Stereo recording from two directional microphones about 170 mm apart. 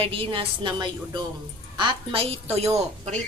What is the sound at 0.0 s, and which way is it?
Speech, 30° right (ahead or behind).